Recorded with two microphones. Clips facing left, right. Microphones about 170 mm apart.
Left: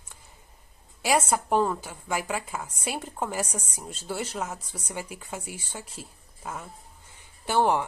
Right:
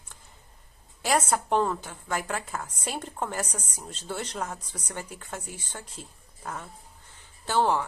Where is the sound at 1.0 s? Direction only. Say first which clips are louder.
Left 1 dB; 10° left (ahead or behind).